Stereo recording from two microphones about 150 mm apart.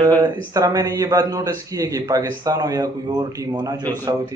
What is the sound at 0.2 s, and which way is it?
A man's voice, 25° right (ahead or behind).